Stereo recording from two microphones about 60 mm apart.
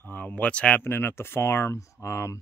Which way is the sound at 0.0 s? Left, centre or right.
Left.